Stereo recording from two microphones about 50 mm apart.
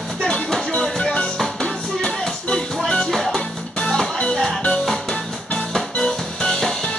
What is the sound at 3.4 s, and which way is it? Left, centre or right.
Music, centre.